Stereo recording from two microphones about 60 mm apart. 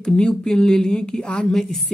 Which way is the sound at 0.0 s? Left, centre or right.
Centre.